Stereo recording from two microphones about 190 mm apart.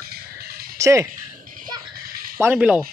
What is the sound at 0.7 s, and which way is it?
Speech, 15° right (ahead or behind).